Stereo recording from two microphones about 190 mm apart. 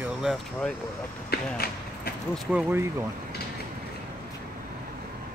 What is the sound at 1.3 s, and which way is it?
Speech, 55° left (ahead or behind).